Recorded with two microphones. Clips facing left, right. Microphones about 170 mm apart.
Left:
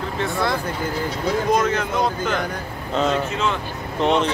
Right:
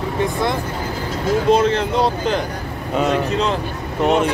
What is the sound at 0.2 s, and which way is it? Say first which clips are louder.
Speech: right 2 dB; 20° right (ahead or behind).